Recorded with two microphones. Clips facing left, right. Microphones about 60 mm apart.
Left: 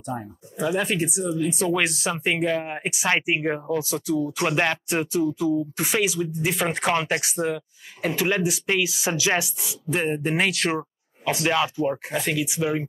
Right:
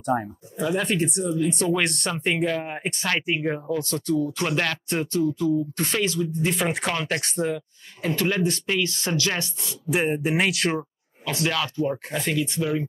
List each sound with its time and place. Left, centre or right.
0.1 s speech: right
0.6 s speech: centre
3.1 s speech: centre
3.7 s speech: centre
4.5 s speech: left; by 6.9 s centre
6.9 s speech: centre
9.8 s speech: centre
10.8 s speech: centre